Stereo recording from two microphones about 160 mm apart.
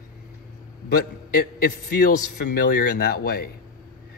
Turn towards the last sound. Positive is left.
turn(degrees=80)